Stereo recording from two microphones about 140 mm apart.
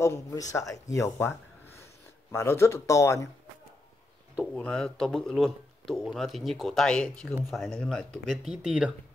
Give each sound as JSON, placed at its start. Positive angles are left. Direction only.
{"t": 0.0, "sound": "speech", "side_deg": 25}
{"t": 2.3, "sound": "speech", "side_deg": 20}
{"t": 4.6, "sound": "speech", "side_deg": 5}